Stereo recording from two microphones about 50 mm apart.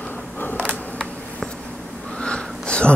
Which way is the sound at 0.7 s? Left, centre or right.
Centre.